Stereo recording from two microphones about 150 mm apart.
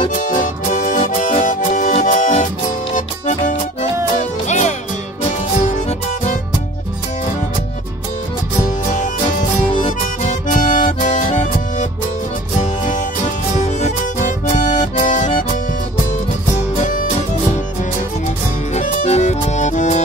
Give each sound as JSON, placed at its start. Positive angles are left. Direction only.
{"t": 0.1, "sound": "music", "side_deg": 60}
{"t": 9.7, "sound": "music", "side_deg": 35}
{"t": 10.2, "sound": "music", "side_deg": 60}
{"t": 18.7, "sound": "music", "side_deg": 50}